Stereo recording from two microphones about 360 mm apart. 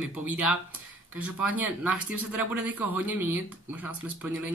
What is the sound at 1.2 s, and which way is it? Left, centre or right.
Speech, left.